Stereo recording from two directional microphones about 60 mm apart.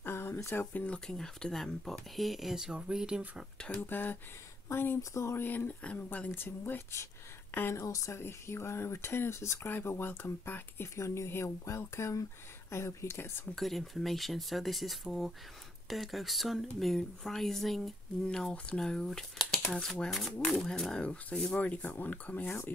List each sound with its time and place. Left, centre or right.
0.0 s a sound: left
0.7 s speech: centre
3.5 s speech: centre
3.8 s speech: left
4.6 s speech: left
5.4 s speech: left
7.7 s speech: left
8.2 s speech: left
9.7 s speech: left
11.0 s speech: left
13.6 s speech: centre
18.5 s speech: centre
20.1 s speech: centre; by 22.6 s left